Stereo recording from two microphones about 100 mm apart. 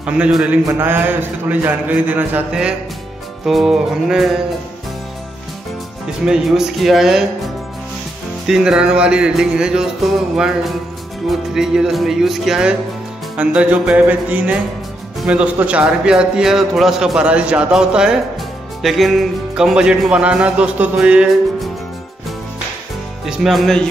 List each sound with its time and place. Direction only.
0.3 s speech: 10° right (ahead or behind)
0.7 s speech: 25° right (ahead or behind); by 4.4 s 5° right (ahead or behind)
6.2 s speech: 5° right (ahead or behind)
8.5 s speech: 5° right (ahead or behind)
23.2 s speech: 5° right (ahead or behind)